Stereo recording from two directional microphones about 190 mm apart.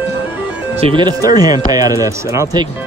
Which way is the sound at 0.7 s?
25° right (ahead or behind).